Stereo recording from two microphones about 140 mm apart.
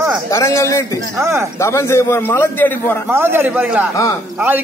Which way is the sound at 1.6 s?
20° left (ahead or behind).